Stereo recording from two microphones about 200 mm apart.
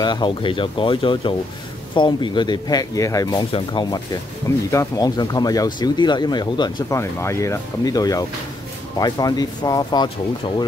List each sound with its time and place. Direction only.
0.0 s speech: 25° left (ahead or behind)